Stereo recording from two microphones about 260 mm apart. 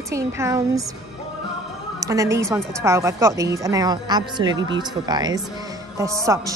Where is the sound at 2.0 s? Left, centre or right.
Centre.